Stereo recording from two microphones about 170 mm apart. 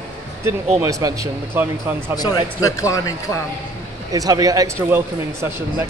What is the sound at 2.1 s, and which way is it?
A man's voice, 20° left (ahead or behind).